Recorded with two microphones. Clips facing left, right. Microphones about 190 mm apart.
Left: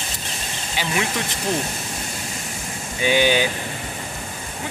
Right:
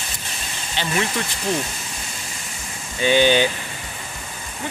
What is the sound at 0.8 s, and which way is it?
Speech, 10° left (ahead or behind).